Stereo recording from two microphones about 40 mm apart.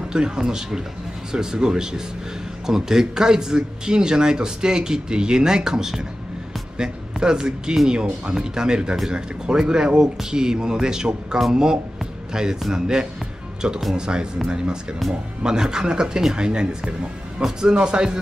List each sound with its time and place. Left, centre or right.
0.1 s speech: centre